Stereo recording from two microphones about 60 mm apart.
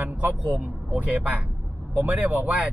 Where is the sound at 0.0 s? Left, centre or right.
Right.